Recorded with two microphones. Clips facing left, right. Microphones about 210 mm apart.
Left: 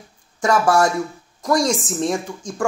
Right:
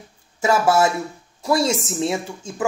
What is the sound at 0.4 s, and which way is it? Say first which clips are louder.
A woman's voice: left 1 dB; 5° right (ahead or behind).